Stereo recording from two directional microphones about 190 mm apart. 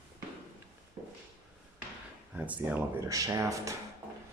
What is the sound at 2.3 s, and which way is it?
Speech, 10° right (ahead or behind).